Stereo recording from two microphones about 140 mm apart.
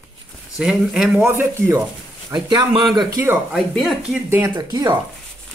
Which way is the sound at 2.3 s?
35° right (ahead or behind).